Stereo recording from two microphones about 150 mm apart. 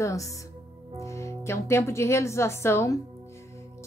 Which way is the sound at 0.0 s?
20° left (ahead or behind).